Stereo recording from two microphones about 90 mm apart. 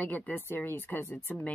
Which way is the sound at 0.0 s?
20° left (ahead or behind).